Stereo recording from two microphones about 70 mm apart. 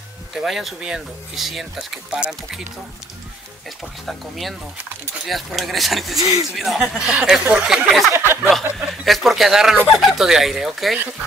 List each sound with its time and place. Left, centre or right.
0.3 s speech: centre
2.1 s speech: centre
4.0 s speech: centre
8.1 s a sound: right
8.5 s speech: centre